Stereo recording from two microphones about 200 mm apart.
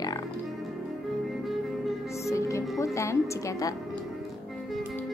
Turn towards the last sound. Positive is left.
turn(degrees=15)  # may be behind; listen again after turning